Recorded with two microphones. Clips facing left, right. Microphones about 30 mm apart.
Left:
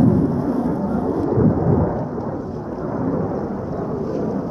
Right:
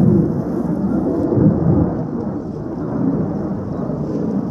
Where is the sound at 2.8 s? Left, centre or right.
Centre.